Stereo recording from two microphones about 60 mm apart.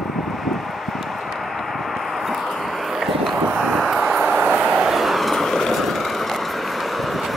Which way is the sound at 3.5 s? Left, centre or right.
Centre.